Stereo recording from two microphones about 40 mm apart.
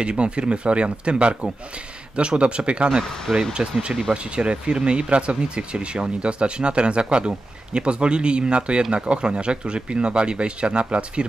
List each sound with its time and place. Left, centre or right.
0.0 s speech: right
3.3 s speech: centre
4.1 s speech: right